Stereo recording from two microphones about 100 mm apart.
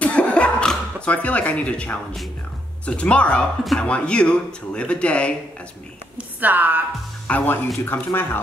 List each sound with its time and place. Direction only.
0.0 s cough: 15° left (ahead or behind)
1.0 s speech: 15° left (ahead or behind)
6.1 s speech: 20° right (ahead or behind)
7.2 s speech: 20° left (ahead or behind)